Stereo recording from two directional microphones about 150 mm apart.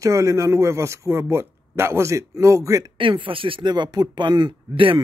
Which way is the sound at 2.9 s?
35° right (ahead or behind).